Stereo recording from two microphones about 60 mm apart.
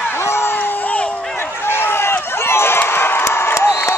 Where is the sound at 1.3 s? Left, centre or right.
Left.